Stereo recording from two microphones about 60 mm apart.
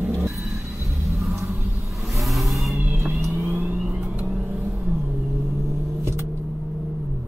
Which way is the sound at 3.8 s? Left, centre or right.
Centre.